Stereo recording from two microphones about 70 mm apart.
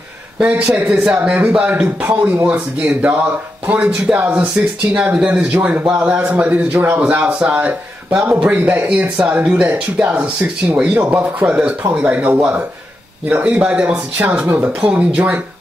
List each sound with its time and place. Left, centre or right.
0.4 s a man's voice: centre
2.4 s a man's voice: centre